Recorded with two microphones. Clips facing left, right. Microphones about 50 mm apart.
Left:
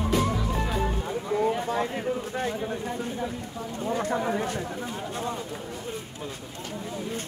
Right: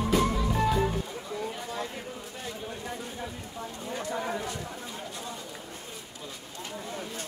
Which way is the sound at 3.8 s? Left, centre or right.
Left.